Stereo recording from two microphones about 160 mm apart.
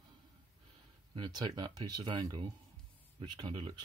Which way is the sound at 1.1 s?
25° right (ahead or behind).